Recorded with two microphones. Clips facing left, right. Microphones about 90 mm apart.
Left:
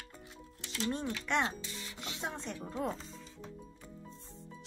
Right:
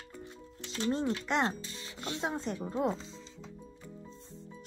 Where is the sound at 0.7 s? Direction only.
30° right (ahead or behind).